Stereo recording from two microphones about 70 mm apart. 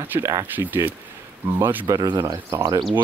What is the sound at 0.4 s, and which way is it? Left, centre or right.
Speech, right.